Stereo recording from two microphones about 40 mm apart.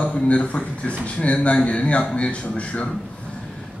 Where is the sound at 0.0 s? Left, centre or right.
Left.